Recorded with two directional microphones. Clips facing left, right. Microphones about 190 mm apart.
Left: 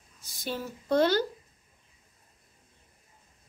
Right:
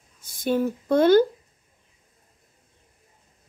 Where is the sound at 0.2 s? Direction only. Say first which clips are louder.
Right 12 dB; 55° right (ahead or behind).